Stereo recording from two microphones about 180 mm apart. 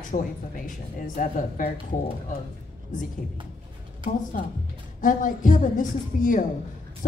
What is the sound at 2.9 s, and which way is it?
Speech, 45° left (ahead or behind).